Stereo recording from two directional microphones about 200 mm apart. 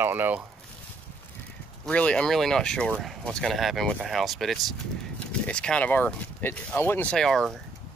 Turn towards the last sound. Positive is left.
turn(degrees=0)  # may be behind; listen again after turning